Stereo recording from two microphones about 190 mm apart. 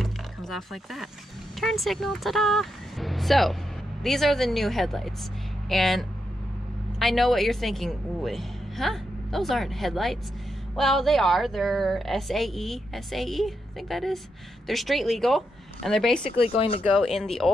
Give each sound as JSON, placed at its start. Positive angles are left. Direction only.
{"t": 0.0, "sound": "music", "side_deg": 0}
{"t": 1.6, "sound": "a woman's voice", "side_deg": 0}
{"t": 16.2, "sound": "speech", "side_deg": 30}
{"t": 16.9, "sound": "a woman's voice", "side_deg": 0}